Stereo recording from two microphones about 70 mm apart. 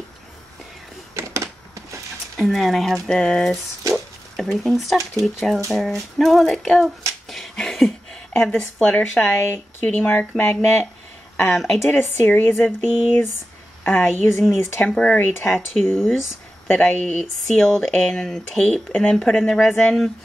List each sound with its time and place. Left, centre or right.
1.1 s a sound: right
2.3 s a sound: centre
8.4 s speech: centre
9.4 s speech: left
10.4 s speech: left
11.4 s a sound: centre
11.9 s speech: left
12.6 s speech: centre
14.1 s speech: left
14.8 s speech: centre
15.4 s a sound: centre
16.6 s speech: centre